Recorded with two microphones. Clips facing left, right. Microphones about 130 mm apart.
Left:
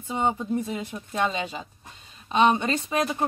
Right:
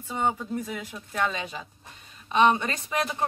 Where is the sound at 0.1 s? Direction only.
20° left (ahead or behind).